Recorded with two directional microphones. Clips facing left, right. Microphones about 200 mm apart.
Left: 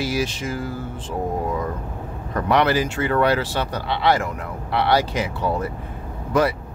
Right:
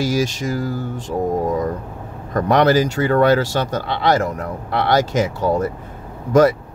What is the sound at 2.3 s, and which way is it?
Speech, 40° right (ahead or behind).